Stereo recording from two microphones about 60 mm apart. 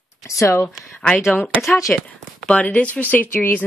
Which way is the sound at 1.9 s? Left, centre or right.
Left.